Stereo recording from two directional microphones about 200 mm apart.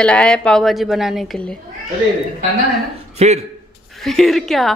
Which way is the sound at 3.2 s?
35° right (ahead or behind).